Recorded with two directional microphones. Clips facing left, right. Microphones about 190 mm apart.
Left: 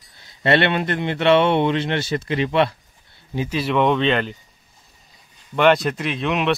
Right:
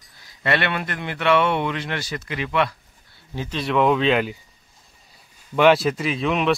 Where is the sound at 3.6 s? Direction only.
Centre (ahead or behind).